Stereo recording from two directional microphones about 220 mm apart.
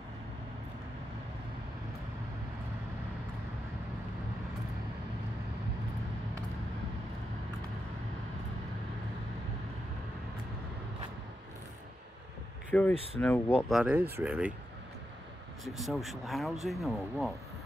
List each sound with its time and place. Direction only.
12.9 s speech: 25° right (ahead or behind)
13.2 s speech: 10° left (ahead or behind)
13.7 s speech: 5° right (ahead or behind)
15.6 s speech: centre (ahead or behind)